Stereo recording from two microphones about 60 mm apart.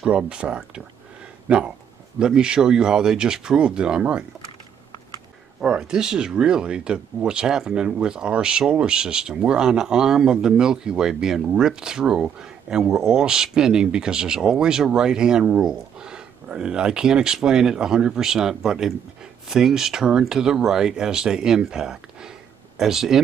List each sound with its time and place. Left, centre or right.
0.0 s speech: centre
5.8 s speech: centre